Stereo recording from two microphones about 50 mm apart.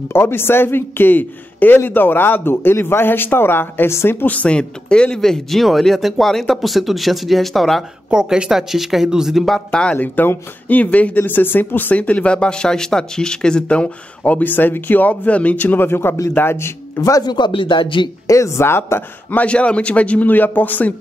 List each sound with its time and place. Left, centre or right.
0.1 s a man's voice: left
4.3 s speech: left; by 7.8 s centre
8.1 s speech: centre
9.7 s speech: centre
9.9 s speech: left
18.3 s a woman's voice: left
18.7 s a man's voice: left
19.3 s speech: left